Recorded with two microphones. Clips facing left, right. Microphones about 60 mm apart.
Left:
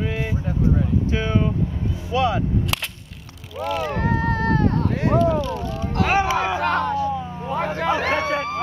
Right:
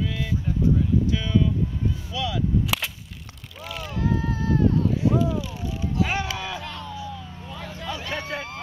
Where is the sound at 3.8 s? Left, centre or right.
Left.